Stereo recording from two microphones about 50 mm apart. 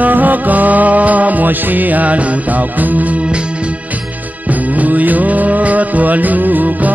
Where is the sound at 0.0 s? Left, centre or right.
Right.